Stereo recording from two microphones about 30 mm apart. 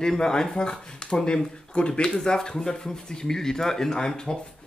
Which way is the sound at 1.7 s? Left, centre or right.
Left.